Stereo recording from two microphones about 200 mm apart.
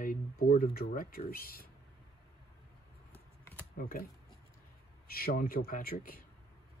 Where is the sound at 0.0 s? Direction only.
45° left (ahead or behind).